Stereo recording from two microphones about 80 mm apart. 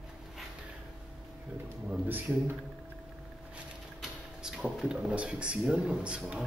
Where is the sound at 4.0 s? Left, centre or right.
Centre.